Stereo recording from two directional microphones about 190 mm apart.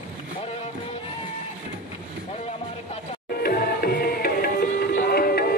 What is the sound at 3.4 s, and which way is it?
Music, 50° left (ahead or behind).